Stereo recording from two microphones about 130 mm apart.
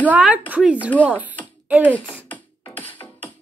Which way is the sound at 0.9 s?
10° left (ahead or behind).